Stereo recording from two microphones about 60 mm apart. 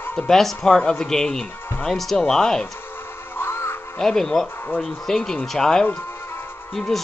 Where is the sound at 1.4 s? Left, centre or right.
Left.